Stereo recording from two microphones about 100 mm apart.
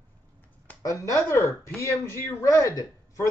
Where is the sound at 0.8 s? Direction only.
35° left (ahead or behind).